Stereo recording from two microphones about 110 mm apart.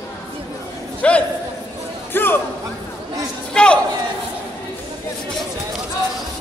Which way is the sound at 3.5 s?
10° left (ahead or behind).